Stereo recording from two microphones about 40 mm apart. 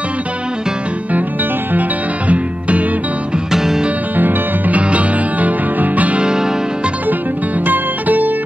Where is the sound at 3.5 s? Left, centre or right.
Centre.